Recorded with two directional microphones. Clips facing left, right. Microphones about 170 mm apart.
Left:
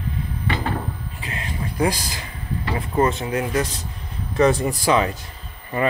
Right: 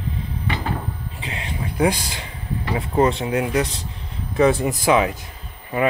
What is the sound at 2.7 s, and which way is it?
Speech, 15° right (ahead or behind).